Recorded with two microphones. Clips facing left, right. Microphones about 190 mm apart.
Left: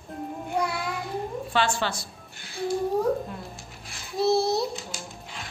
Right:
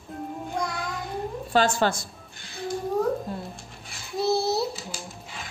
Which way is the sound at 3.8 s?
Centre (ahead or behind).